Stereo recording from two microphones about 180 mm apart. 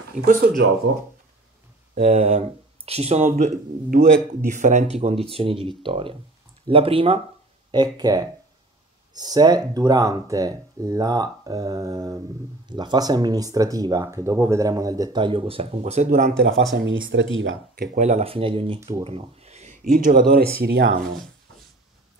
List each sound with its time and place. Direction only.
0.2 s speech: 55° right (ahead or behind)
2.0 s speech: 35° right (ahead or behind)
16.3 s speech: 90° right
17.7 s speech: 40° right (ahead or behind); by 21.0 s 65° right (ahead or behind)